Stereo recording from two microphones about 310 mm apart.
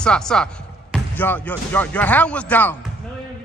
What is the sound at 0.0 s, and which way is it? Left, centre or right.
Speech, centre.